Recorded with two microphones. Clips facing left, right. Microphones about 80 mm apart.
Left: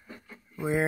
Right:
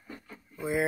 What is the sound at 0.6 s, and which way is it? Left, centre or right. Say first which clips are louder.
Speech: left 2 dB; left.